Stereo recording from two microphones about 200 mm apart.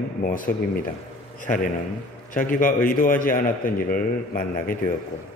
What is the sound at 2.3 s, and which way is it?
A man's voice, 40° left (ahead or behind).